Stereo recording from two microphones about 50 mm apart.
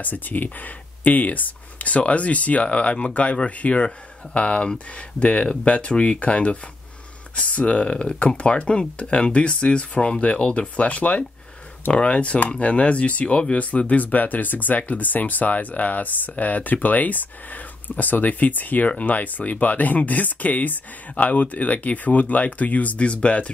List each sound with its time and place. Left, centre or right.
0.0 s speech: left